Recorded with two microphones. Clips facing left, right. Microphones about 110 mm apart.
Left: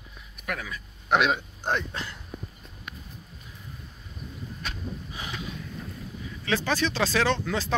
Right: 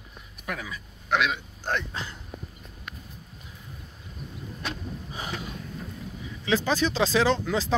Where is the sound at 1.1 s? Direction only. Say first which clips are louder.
Left 3 dB; 25° left (ahead or behind).